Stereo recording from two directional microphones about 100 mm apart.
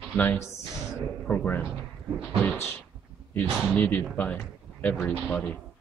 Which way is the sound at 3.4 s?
20° left (ahead or behind).